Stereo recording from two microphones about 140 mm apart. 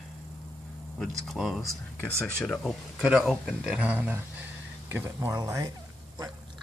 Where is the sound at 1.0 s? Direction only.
Centre (ahead or behind); by 5.7 s 25° right (ahead or behind).